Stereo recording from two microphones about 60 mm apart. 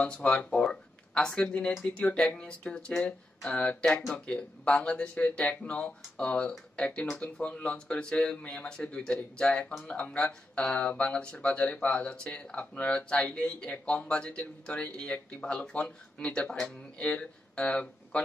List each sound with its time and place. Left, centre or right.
0.0 s speech: centre
13.1 s speech: centre